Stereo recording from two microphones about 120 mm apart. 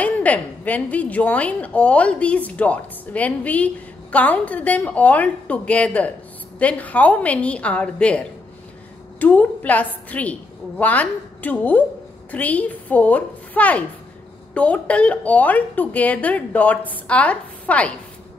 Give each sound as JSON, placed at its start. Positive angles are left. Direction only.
{"t": 0.0, "sound": "a woman's voice", "side_deg": 15}